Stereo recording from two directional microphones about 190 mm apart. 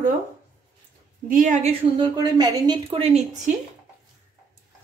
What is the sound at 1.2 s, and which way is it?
A woman's voice, 45° right (ahead or behind).